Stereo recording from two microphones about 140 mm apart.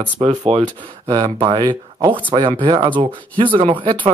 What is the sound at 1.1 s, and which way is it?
Speech, 35° right (ahead or behind).